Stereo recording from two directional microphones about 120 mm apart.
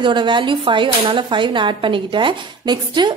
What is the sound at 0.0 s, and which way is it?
Speech, 40° right (ahead or behind).